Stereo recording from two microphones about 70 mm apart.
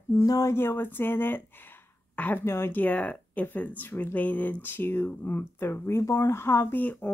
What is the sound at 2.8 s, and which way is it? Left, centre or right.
Speech, left.